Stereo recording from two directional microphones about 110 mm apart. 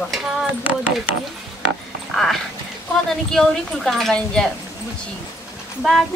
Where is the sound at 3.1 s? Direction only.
5° left (ahead or behind).